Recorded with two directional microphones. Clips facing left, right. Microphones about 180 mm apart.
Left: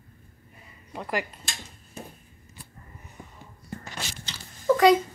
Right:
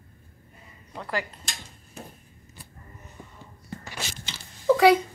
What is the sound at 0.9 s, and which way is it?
Speech, 15° left (ahead or behind).